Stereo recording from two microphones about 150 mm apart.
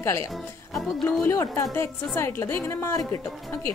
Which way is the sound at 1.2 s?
15° left (ahead or behind).